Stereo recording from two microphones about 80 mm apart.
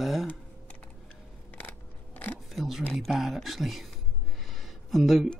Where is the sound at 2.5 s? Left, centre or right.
Centre.